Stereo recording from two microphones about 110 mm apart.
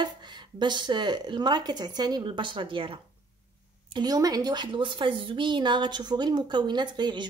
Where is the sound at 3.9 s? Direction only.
35° right (ahead or behind).